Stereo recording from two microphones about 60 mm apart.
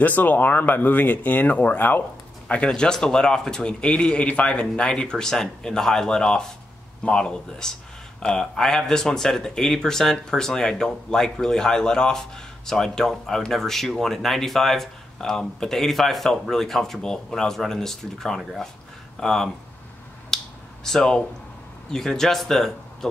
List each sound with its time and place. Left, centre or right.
0.0 s speech: left
2.4 s speech: centre
20.3 s finger snapping: centre
20.8 s speech: centre